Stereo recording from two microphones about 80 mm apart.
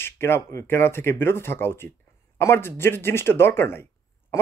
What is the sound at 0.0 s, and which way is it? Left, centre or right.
Speech, left.